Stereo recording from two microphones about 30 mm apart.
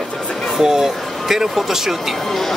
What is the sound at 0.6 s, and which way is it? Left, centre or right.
Speech, centre.